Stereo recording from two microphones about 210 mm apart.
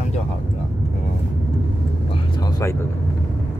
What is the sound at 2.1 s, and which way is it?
Vehicle, 20° left (ahead or behind).